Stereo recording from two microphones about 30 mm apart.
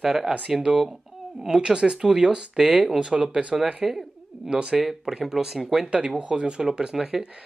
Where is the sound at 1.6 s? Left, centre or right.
Right.